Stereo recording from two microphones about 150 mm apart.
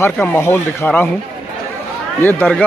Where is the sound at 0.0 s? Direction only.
15° left (ahead or behind).